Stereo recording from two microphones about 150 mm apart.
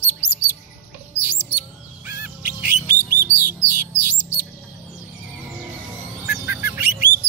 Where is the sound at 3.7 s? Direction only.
15° right (ahead or behind).